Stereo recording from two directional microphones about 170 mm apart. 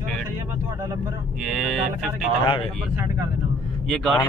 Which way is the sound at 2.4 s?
30° left (ahead or behind).